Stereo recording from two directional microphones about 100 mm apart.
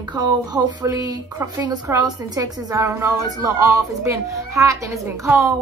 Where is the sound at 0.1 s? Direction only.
45° right (ahead or behind).